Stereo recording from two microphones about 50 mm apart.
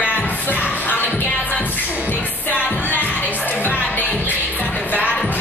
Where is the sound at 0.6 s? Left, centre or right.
Left.